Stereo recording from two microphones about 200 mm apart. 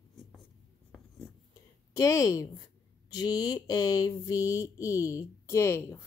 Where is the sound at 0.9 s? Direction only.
5° left (ahead or behind).